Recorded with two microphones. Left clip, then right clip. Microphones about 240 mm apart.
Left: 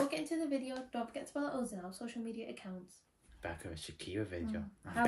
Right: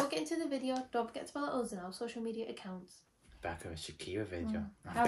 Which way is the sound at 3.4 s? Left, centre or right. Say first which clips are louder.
Right 2 dB; centre.